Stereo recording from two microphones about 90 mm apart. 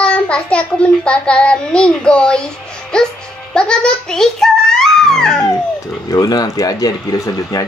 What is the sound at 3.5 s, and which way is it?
A child's voice, 10° left (ahead or behind).